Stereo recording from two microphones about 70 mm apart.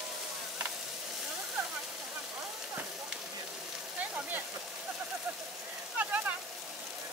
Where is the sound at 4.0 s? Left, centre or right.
Right.